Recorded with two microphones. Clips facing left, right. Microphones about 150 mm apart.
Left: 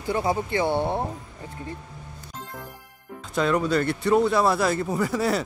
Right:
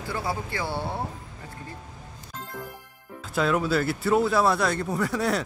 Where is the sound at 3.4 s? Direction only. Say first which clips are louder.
Left 1 dB; 5° right (ahead or behind).